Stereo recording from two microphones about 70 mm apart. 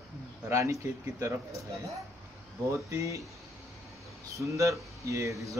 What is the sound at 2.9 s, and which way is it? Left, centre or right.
Speech, right.